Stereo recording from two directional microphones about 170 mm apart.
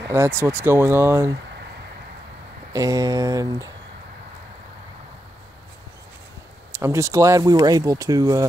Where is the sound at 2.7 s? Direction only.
20° right (ahead or behind).